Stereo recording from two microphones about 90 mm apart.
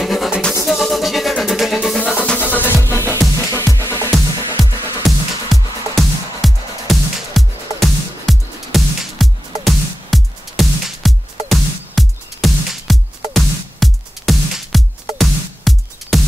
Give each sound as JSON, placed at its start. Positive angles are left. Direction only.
{"t": 0.0, "sound": "music", "side_deg": 0}
{"t": 2.0, "sound": "music", "side_deg": 10}
{"t": 4.6, "sound": "music", "side_deg": 0}